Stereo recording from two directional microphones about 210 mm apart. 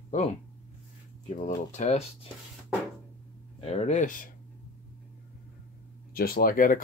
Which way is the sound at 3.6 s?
30° left (ahead or behind).